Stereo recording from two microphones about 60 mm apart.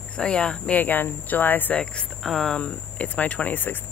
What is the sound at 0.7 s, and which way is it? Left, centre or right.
Speech, left.